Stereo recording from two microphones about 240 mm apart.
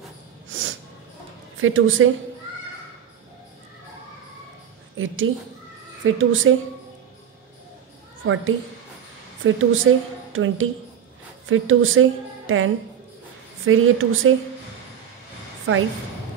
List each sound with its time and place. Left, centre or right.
0.5 s snort: right
1.6 s speech: right
4.9 s a woman's voice: right
9.4 s a woman's voice: right
15.7 s speech: right